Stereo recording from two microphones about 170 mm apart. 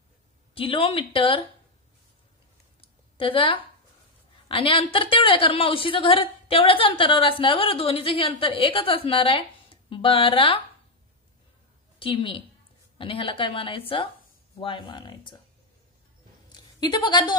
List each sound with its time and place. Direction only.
0.6 s a woman's voice: 30° left (ahead or behind)
2.8 s a sound: 30° left (ahead or behind)
4.5 s a woman's voice: 30° left (ahead or behind)
12.0 s a woman's voice: 30° left (ahead or behind)
16.5 s a woman's voice: 25° left (ahead or behind)